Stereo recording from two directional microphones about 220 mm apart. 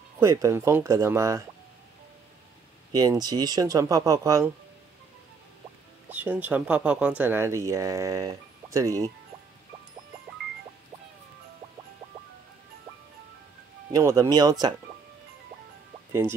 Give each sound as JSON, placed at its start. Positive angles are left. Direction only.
{"t": 0.2, "sound": "speech", "side_deg": -15}
{"t": 2.9, "sound": "speech", "side_deg": -20}
{"t": 6.0, "sound": "speech", "side_deg": -5}
{"t": 13.9, "sound": "speech", "side_deg": -15}
{"t": 16.1, "sound": "speech", "side_deg": -10}